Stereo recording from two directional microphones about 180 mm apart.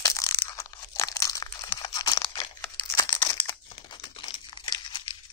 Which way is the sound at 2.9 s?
20° left (ahead or behind).